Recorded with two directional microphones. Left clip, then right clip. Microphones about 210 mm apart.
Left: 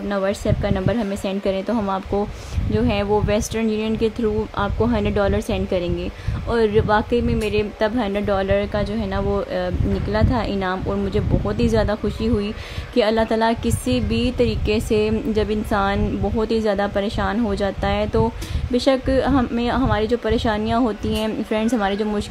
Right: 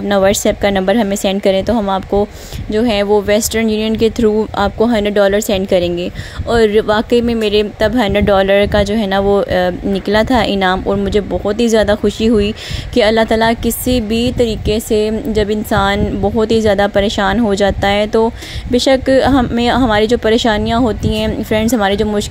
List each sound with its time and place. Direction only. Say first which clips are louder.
0.1 s speech: right 10 dB; 25° right (ahead or behind)